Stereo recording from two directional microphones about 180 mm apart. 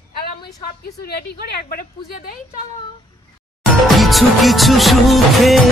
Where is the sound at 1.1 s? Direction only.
60° left (ahead or behind).